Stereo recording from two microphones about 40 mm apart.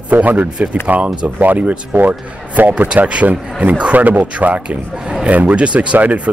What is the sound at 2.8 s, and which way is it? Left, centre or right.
Speech, right.